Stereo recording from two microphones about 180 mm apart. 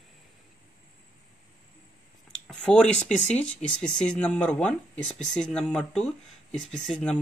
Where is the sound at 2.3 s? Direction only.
5° left (ahead or behind).